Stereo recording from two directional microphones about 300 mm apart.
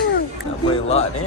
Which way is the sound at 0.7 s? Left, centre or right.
Centre.